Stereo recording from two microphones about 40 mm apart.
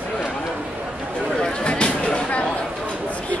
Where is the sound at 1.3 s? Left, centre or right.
Left.